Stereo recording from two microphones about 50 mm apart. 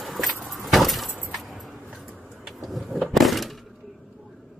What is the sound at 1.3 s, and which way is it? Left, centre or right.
Vehicle, centre.